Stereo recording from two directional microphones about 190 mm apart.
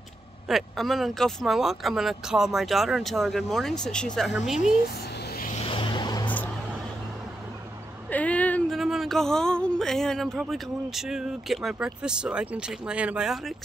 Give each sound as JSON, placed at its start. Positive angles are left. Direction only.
{"t": 0.5, "sound": "speech", "side_deg": 0}
{"t": 5.2, "sound": "vehicle", "side_deg": 55}
{"t": 5.5, "sound": "vehicle", "side_deg": 30}
{"t": 8.1, "sound": "speech", "side_deg": 10}